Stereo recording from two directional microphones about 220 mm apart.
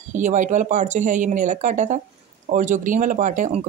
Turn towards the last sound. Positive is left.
turn(degrees=-35)  # may be behind; listen again after turning